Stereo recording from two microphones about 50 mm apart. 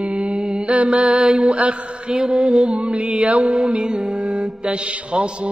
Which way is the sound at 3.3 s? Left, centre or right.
Centre.